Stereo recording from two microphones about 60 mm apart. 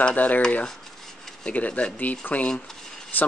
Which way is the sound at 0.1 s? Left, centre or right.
Left.